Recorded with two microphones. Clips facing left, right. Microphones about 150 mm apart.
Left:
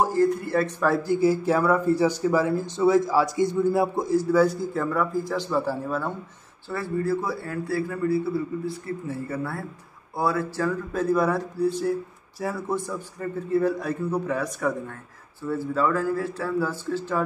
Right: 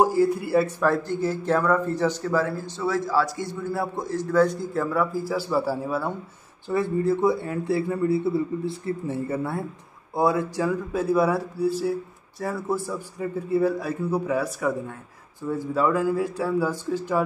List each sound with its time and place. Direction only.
0.0 s a man's voice: 10° right (ahead or behind)
6.7 s a man's voice: 20° right (ahead or behind)